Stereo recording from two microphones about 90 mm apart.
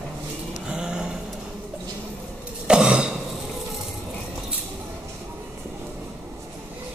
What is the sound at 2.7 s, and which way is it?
Throat clearing, 10° right (ahead or behind).